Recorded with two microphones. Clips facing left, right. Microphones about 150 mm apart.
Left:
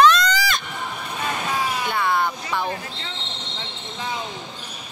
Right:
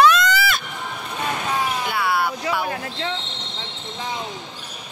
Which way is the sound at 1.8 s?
5° right (ahead or behind).